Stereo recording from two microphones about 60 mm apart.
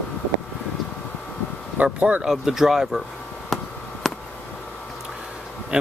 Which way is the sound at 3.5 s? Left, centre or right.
Centre.